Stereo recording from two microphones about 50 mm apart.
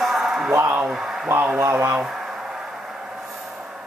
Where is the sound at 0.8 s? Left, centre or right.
Centre.